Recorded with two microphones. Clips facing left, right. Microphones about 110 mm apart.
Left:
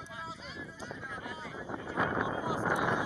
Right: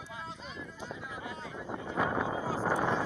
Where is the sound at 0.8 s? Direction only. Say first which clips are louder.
Right 1 dB; 25° right (ahead or behind).